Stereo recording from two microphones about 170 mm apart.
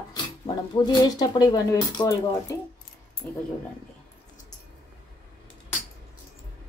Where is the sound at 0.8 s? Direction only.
25° left (ahead or behind).